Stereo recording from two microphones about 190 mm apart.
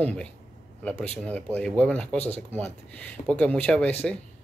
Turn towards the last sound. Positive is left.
turn(degrees=5)  # may be behind; listen again after turning